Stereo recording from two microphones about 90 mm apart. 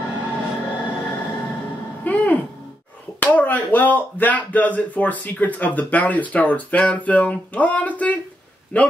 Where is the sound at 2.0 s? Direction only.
20° left (ahead or behind).